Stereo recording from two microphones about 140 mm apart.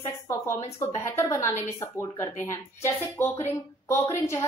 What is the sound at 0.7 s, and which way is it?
A woman's voice, 20° left (ahead or behind).